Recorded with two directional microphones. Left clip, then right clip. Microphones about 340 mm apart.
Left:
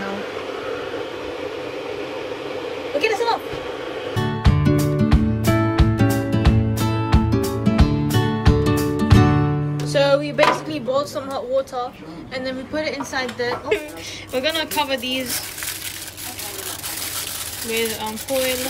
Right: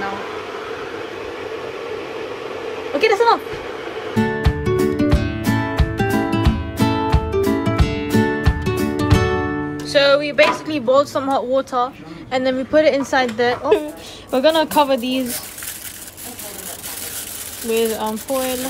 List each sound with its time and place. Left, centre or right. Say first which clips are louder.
4.2 s music: right 5 dB; centre
9.8 s speech: right 3 dB; centre
17.7 s speech: right 4 dB; centre